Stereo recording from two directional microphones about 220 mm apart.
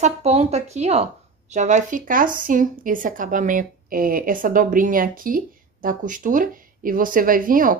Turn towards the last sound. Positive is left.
turn(degrees=-40)  # may be behind; listen again after turning